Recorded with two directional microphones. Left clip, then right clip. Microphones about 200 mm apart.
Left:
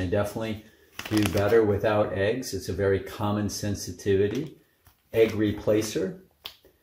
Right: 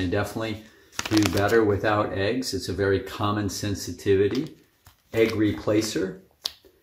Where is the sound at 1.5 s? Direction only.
5° right (ahead or behind).